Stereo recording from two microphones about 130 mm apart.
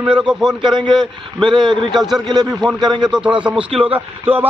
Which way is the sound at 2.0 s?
Centre (ahead or behind).